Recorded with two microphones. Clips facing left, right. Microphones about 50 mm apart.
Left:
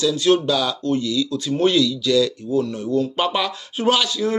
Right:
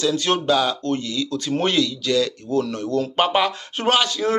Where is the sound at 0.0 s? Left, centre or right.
Right.